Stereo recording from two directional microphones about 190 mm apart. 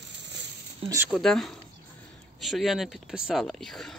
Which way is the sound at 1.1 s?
Centre (ahead or behind).